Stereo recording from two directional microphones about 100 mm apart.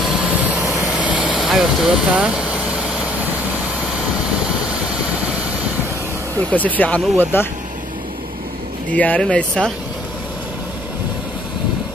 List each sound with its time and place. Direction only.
0.0 s vehicle: centre (ahead or behind)
0.3 s vehicle: 15° right (ahead or behind)
0.6 s vehicle: centre (ahead or behind)
6.5 s speech: 15° left (ahead or behind)
8.9 s speech: 15° left (ahead or behind)